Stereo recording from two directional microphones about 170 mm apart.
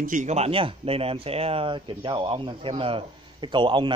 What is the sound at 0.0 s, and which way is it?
Speech, 50° right (ahead or behind).